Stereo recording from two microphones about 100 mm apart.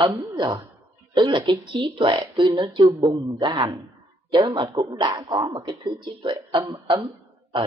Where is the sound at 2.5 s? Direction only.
35° right (ahead or behind).